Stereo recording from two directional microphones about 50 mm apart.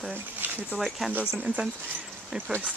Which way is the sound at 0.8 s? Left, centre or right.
Centre.